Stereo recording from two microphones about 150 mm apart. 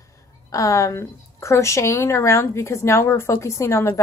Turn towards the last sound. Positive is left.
turn(degrees=20)  # may be behind; listen again after turning